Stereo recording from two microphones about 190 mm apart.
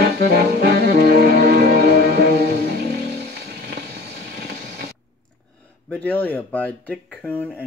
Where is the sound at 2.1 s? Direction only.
55° right (ahead or behind).